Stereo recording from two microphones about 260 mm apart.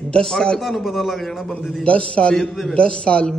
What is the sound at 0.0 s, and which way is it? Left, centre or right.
A man's voice, centre.